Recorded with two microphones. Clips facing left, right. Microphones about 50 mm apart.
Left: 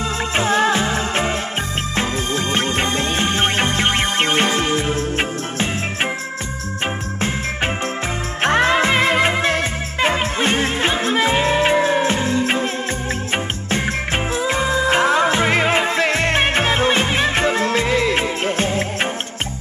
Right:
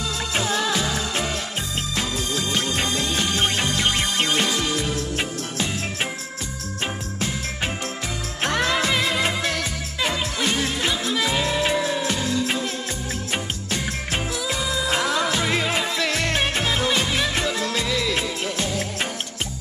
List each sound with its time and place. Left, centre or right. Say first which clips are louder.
0.4 s music: left 7 dB; left
8.4 s music: left 7 dB; left